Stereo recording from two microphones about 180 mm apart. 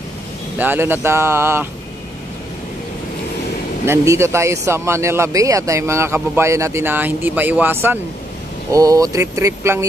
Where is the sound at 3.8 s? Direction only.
15° right (ahead or behind).